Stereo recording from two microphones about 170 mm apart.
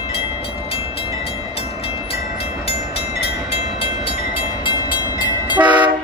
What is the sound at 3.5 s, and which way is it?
Train, 35° left (ahead or behind).